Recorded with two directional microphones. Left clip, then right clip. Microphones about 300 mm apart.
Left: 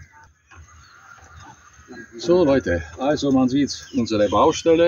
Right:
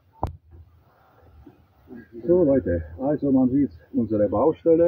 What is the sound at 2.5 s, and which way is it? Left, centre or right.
Speech, centre.